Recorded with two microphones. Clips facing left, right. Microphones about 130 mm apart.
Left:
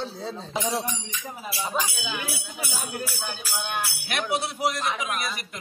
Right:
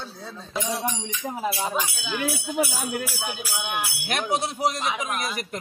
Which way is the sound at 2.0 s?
Centre (ahead or behind).